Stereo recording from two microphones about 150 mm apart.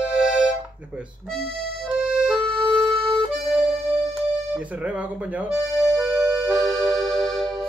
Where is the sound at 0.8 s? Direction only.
10° right (ahead or behind).